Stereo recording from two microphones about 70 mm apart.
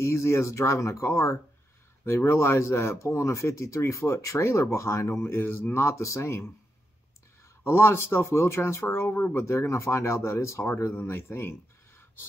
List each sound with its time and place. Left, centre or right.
0.0 s speech: left
7.6 s speech: left
9.4 s speech: left